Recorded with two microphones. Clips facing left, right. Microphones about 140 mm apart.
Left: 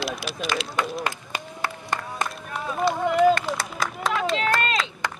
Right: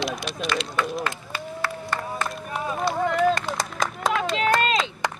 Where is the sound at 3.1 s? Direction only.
Centre (ahead or behind).